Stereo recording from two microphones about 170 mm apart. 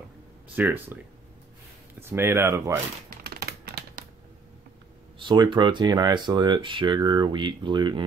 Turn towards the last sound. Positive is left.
turn(degrees=-25)  # may be behind; listen again after turning